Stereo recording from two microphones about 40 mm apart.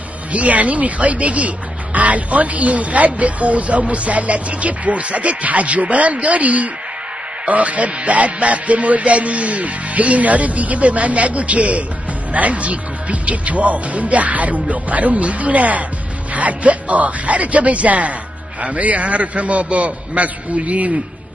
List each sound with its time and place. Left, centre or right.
0.3 s speech: right